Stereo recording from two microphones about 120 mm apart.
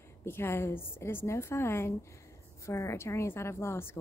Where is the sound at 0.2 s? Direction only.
20° left (ahead or behind).